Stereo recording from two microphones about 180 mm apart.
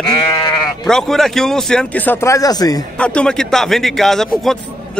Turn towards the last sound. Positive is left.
turn(degrees=0)  # may be behind; listen again after turning